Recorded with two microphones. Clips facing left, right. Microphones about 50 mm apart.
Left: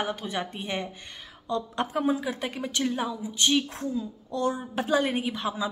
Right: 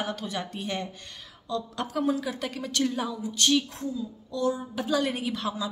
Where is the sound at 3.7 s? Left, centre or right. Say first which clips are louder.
Left 2 dB; left.